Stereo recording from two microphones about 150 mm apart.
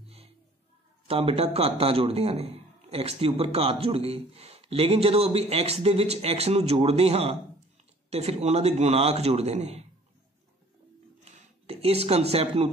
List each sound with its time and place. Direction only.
1.0 s a man's voice: 40° right (ahead or behind)
11.2 s speech: 45° right (ahead or behind)